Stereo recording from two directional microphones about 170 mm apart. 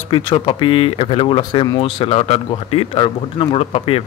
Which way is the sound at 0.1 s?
30° left (ahead or behind).